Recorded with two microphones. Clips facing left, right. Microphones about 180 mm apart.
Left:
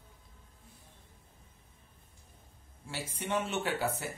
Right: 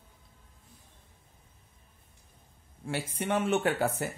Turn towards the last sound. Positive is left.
turn(degrees=-50)  # may be behind; listen again after turning